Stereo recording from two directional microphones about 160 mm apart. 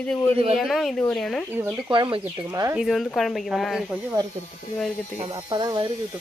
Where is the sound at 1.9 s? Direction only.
30° right (ahead or behind).